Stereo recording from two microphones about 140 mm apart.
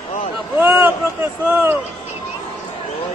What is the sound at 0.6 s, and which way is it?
Speech, 15° right (ahead or behind).